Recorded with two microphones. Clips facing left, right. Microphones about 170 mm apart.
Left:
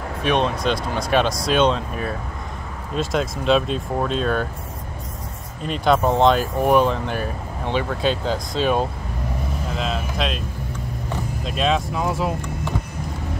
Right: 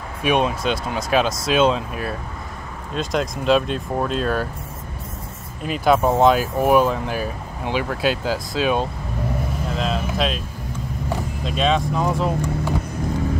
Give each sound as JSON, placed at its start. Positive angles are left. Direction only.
{"t": 0.2, "sound": "speech", "side_deg": -10}
{"t": 5.6, "sound": "speech", "side_deg": -5}
{"t": 9.8, "sound": "a sound", "side_deg": 0}
{"t": 11.4, "sound": "speech", "side_deg": 0}